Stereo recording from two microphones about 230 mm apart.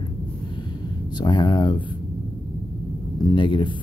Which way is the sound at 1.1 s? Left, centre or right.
Centre.